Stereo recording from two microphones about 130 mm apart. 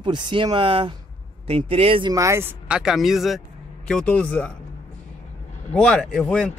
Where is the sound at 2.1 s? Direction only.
20° right (ahead or behind); by 4.5 s 10° left (ahead or behind).